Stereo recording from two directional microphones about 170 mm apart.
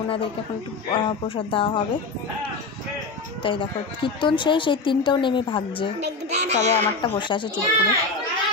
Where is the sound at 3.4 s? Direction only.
30° left (ahead or behind).